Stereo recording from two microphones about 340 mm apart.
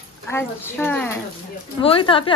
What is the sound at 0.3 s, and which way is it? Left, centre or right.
A woman's voice, centre.